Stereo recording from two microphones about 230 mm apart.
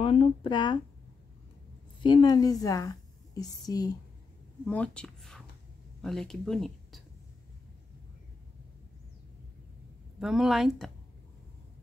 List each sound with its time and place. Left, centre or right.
0.0 s speech: left
2.0 s a woman's voice: centre
4.6 s a woman's voice: centre
10.1 s a woman's voice: centre